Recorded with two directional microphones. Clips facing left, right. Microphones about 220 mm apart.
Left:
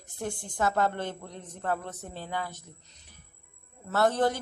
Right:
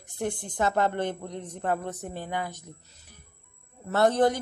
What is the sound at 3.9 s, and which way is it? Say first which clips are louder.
Speech: right 3 dB; 20° right (ahead or behind).